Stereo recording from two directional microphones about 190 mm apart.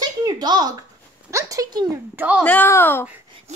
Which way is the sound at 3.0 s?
10° right (ahead or behind).